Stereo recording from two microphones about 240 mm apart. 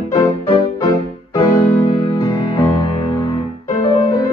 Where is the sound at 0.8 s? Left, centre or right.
Centre.